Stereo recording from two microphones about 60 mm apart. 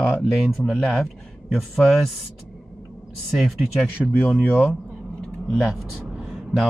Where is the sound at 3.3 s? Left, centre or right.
Centre.